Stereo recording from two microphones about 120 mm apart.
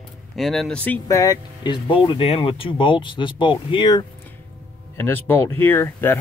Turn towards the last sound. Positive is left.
turn(degrees=20)  # may be behind; listen again after turning